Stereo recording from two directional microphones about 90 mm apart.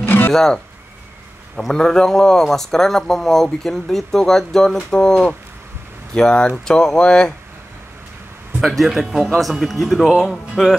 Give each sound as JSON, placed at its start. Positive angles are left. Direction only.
{"t": 0.0, "sound": "music", "side_deg": 25}
{"t": 0.3, "sound": "speech", "side_deg": 5}
{"t": 1.6, "sound": "speech", "side_deg": 5}
{"t": 8.5, "sound": "speech", "side_deg": 0}